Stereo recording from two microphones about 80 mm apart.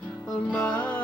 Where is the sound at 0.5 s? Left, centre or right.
Centre.